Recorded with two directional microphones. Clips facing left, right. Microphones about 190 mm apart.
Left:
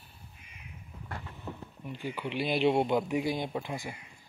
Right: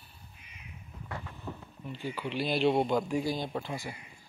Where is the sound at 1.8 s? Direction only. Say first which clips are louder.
Even; 15° left (ahead or behind).